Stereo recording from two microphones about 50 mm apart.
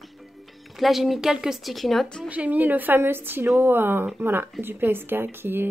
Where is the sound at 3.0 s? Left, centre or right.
Right.